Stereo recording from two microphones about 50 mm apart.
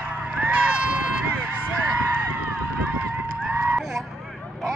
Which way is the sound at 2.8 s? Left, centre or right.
Right.